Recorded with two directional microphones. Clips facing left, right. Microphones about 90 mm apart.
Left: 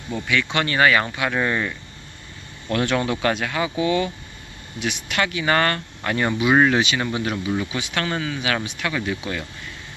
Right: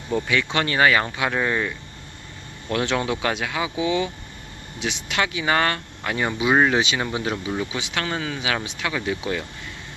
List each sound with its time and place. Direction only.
0.1 s speech: 25° right (ahead or behind)
2.7 s speech: 20° right (ahead or behind)
4.7 s speech: 25° right (ahead or behind)